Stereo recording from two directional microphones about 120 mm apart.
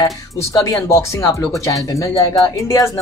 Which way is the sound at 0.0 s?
30° left (ahead or behind).